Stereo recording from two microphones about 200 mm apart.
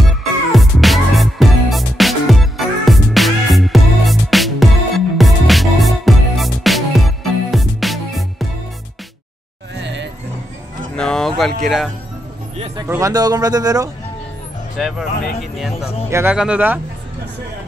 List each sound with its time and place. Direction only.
0.5 s music: centre (ahead or behind)
9.8 s music: 60° right (ahead or behind)
11.0 s a sound: 5° left (ahead or behind)
12.8 s speech: 15° right (ahead or behind)
14.8 s speech: centre (ahead or behind)
16.1 s speech: 10° right (ahead or behind)